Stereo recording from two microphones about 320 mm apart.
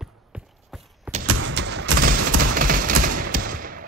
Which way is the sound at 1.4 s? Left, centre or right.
Right.